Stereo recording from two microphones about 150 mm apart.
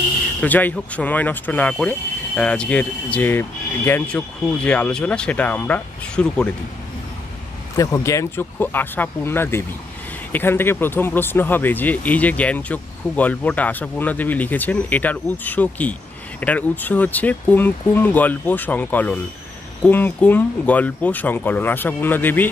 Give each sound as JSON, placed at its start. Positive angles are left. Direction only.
{"t": 0.4, "sound": "speech", "side_deg": 10}
{"t": 7.7, "sound": "speech", "side_deg": 20}